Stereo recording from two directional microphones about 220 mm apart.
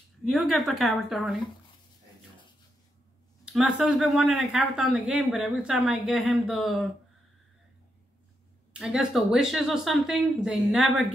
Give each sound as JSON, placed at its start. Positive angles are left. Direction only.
{"t": 0.2, "sound": "speech", "side_deg": 0}
{"t": 3.4, "sound": "speech", "side_deg": -5}
{"t": 8.7, "sound": "speech", "side_deg": 0}